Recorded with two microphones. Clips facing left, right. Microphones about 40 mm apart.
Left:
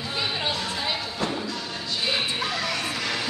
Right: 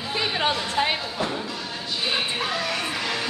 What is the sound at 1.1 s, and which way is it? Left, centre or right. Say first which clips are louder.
Sheep: right 1 dB; centre.